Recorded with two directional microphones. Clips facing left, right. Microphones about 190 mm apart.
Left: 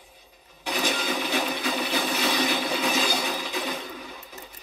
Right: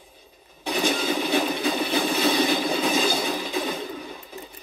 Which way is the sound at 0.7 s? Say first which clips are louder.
Right 4 dB; 30° right (ahead or behind).